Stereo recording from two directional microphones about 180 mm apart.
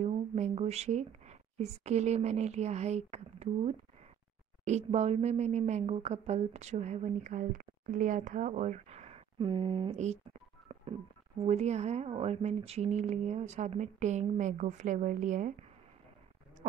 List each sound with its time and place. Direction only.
0.0 s a woman's voice: 35° right (ahead or behind)